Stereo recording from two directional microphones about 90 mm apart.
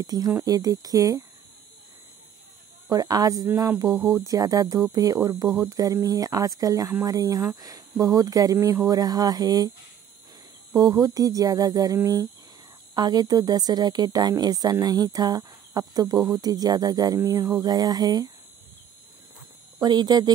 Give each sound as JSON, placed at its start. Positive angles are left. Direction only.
{"t": 0.0, "sound": "speech", "side_deg": -45}
{"t": 2.9, "sound": "speech", "side_deg": -45}
{"t": 10.7, "sound": "speech", "side_deg": -45}
{"t": 19.8, "sound": "speech", "side_deg": -50}